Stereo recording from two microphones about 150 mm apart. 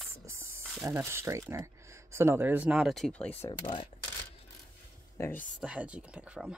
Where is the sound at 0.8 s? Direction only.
20° right (ahead or behind); by 3.4 s 10° left (ahead or behind).